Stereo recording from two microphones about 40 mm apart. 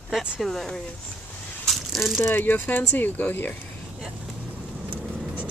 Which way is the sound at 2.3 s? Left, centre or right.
Left.